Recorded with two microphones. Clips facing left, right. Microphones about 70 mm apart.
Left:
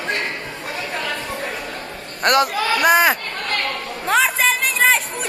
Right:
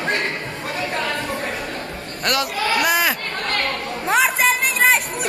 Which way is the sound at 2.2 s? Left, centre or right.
Left.